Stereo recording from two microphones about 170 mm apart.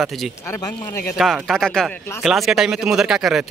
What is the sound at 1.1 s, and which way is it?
Speech, centre (ahead or behind).